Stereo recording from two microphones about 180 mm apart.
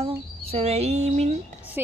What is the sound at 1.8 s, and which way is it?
Speech, 10° right (ahead or behind).